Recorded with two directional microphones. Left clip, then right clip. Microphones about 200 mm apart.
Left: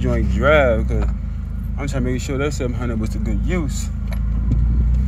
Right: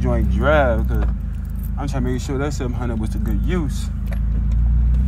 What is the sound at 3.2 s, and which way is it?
Speech, 20° left (ahead or behind).